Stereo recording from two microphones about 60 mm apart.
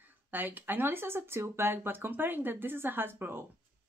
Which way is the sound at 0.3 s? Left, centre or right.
Right.